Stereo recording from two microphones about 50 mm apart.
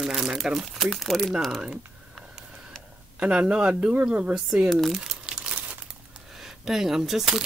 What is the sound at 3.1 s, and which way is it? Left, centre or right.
Speech, right.